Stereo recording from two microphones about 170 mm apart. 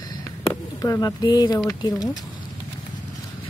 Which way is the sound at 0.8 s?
20° left (ahead or behind).